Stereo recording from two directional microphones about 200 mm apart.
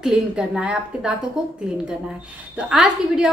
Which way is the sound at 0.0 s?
5° right (ahead or behind).